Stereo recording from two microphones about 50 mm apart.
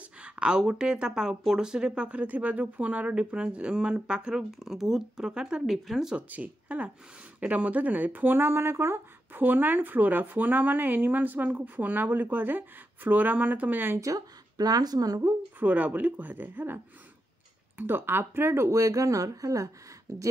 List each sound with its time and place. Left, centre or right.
0.2 s speech: centre
4.4 s speech: centre
6.1 s speech: right
9.4 s speech: right
15.2 s a woman's voice: right
15.6 s speech: right